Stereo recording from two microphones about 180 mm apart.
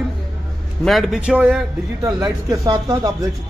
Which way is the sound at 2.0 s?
20° right (ahead or behind).